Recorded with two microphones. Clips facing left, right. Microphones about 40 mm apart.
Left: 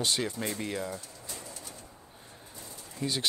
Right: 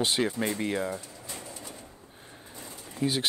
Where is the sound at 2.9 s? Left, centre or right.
Centre.